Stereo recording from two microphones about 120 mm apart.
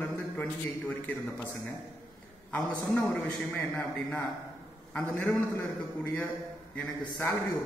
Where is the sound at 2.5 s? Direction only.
5° left (ahead or behind).